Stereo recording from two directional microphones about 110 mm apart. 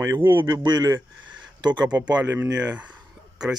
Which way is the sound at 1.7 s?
10° right (ahead or behind).